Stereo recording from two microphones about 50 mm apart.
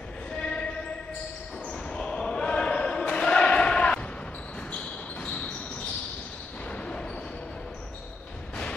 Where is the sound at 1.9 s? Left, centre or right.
Centre.